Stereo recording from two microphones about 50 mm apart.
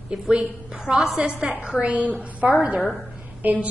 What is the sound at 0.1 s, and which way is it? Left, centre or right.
A woman's voice, right.